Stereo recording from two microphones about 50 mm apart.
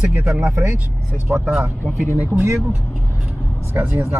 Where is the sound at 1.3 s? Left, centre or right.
Centre.